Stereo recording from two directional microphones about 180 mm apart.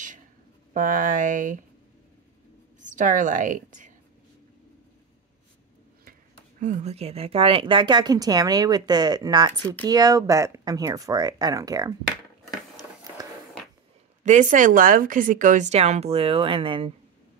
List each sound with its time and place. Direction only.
0.7 s speech: 45° right (ahead or behind)
2.8 s a woman's voice: 45° right (ahead or behind)
6.6 s a woman's voice: 40° right (ahead or behind); by 11.9 s 20° right (ahead or behind)
14.2 s speech: 45° right (ahead or behind)